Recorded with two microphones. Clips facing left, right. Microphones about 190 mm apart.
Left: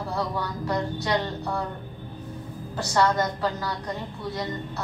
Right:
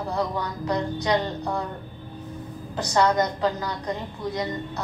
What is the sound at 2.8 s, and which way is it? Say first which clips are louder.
A woman's voice: right 2 dB; 15° right (ahead or behind).